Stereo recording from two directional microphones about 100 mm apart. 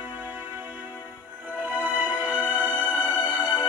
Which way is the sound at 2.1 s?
15° right (ahead or behind).